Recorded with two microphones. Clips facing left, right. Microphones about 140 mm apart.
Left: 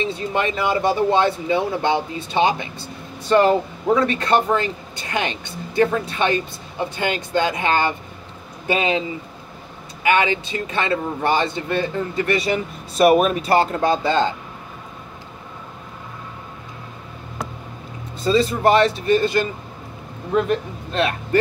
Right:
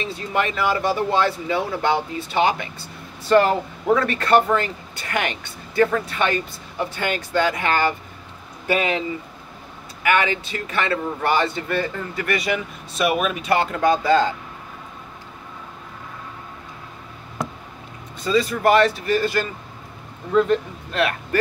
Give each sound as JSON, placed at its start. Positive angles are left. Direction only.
{"t": 0.0, "sound": "speech", "side_deg": 20}
{"t": 10.0, "sound": "speech", "side_deg": 20}
{"t": 18.2, "sound": "a man's voice", "side_deg": 25}